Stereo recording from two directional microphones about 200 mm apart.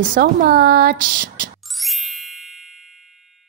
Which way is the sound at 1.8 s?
Centre (ahead or behind).